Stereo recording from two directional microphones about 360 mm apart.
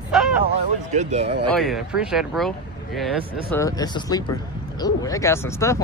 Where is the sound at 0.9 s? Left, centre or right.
Centre.